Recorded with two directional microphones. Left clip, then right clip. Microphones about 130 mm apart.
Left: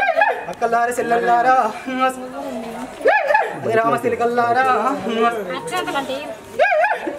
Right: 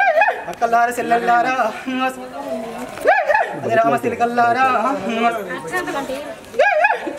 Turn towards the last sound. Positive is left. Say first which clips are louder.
# right 1 dB
turn(degrees=0)  # may be behind; listen again after turning